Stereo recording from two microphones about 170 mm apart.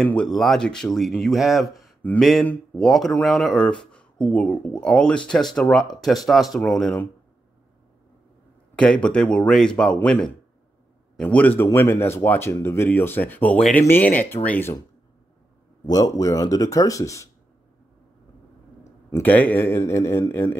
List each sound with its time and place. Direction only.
0.0 s speech: 5° left (ahead or behind)
8.7 s speech: 5° left (ahead or behind)
15.8 s speech: 20° left (ahead or behind)
19.0 s speech: 15° left (ahead or behind)